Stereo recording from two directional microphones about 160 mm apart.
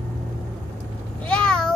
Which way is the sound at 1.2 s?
5° left (ahead or behind).